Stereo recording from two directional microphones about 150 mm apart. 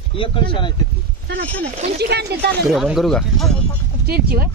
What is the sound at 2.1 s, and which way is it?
Speech, 90° right.